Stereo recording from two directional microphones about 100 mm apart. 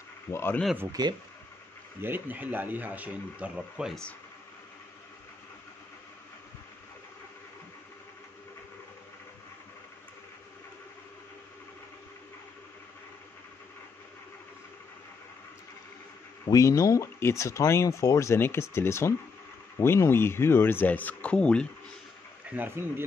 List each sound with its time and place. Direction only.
0.3 s speech: 25° left (ahead or behind)
1.0 s speech: 45° right (ahead or behind)
2.0 s speech: 20° right (ahead or behind)
16.4 s speech: 30° left (ahead or behind); by 21.6 s 10° left (ahead or behind)
22.6 s speech: 25° right (ahead or behind)